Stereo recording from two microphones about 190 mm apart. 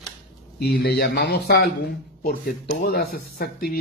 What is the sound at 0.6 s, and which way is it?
Speech, 60° left (ahead or behind).